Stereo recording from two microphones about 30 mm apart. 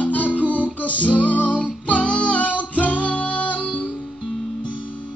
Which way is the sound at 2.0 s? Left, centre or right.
Left.